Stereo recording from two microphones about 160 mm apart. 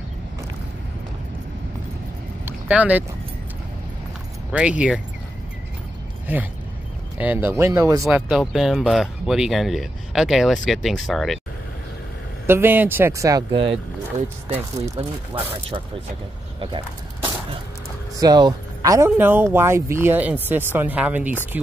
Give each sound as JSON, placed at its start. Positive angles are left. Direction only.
{"t": 2.4, "sound": "boat", "side_deg": -10}
{"t": 4.5, "sound": "speech", "side_deg": -5}
{"t": 7.2, "sound": "speech", "side_deg": -10}
{"t": 8.0, "sound": "speech", "side_deg": 0}
{"t": 12.4, "sound": "speech", "side_deg": -15}
{"t": 15.0, "sound": "speech", "side_deg": -35}
{"t": 16.5, "sound": "a sound", "side_deg": -30}
{"t": 18.1, "sound": "speech", "side_deg": -25}